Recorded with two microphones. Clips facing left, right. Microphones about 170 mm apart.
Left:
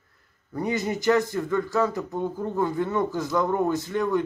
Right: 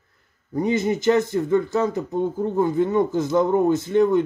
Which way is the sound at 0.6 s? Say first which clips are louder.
Right 5 dB; 20° right (ahead or behind).